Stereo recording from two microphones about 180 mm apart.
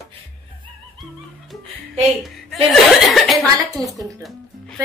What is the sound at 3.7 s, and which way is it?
Music, centre (ahead or behind).